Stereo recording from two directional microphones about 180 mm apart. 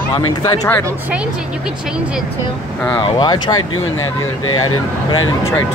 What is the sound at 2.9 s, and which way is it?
Speech, 25° left (ahead or behind).